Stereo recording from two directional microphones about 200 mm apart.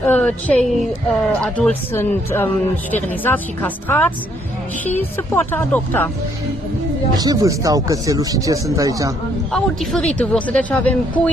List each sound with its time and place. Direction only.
0.0 s speech: 10° left (ahead or behind)
7.2 s speech: 20° right (ahead or behind)
9.5 s a man's voice: 5° left (ahead or behind)